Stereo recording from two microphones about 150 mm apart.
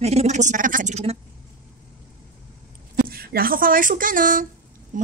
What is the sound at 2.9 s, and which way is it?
Speech, 85° right.